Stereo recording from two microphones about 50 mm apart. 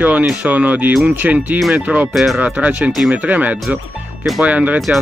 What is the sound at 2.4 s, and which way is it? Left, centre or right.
Speech, right.